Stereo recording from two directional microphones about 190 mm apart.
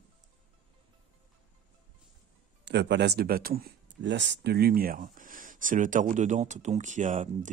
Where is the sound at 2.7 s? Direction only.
65° right (ahead or behind); by 7.5 s 40° right (ahead or behind).